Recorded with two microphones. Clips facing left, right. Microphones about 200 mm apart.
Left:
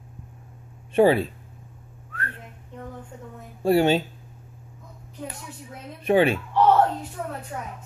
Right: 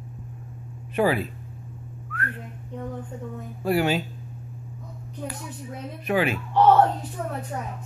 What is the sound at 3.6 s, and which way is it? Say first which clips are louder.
Speech: left 4 dB; 30° left (ahead or behind).